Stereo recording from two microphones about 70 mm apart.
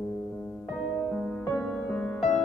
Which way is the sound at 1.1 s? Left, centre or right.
Centre.